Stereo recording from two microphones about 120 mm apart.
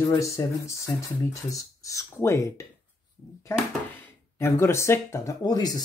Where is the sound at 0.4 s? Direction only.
35° left (ahead or behind).